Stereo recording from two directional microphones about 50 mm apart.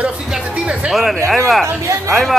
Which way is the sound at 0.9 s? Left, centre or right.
Centre.